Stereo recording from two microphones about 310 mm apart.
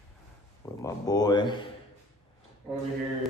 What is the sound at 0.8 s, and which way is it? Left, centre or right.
Speech, centre.